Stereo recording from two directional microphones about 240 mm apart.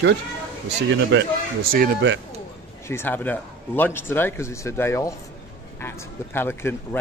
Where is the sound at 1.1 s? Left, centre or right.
Right.